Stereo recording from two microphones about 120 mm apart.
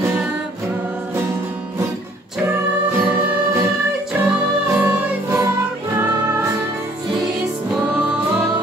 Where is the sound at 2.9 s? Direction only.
15° right (ahead or behind).